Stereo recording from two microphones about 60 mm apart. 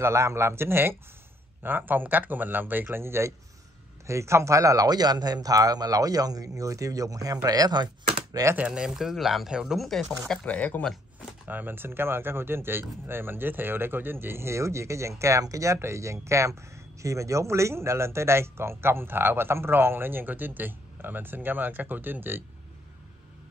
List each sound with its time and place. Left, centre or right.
0.0 s speech: right
7.4 s speech: right
8.3 s speech: right
8.5 s speech: centre
9.5 s speech: centre
9.8 s speech: centre
10.4 s speech: left
11.4 s speech: right